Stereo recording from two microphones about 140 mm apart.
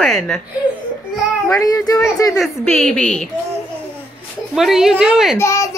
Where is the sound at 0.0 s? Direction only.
5° left (ahead or behind).